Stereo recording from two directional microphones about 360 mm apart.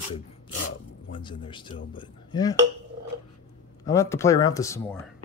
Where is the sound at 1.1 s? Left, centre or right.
Centre.